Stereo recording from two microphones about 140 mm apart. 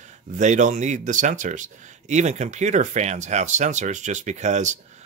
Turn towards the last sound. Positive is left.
turn(degrees=-55)  # may be behind; listen again after turning